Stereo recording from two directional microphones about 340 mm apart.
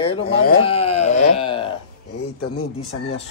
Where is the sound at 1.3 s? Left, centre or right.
Centre.